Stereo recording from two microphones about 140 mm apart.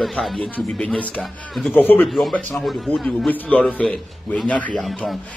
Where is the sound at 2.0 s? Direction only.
Centre (ahead or behind).